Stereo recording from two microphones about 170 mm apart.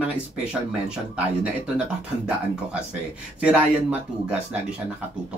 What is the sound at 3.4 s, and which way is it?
Speech, 5° right (ahead or behind).